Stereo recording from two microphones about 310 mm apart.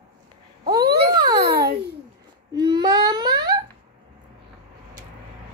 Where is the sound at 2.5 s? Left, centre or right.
Centre.